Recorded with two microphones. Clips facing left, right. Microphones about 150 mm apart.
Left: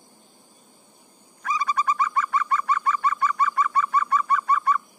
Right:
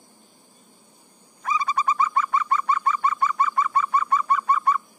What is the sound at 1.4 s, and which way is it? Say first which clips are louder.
Bird: right 1 dB; 25° right (ahead or behind).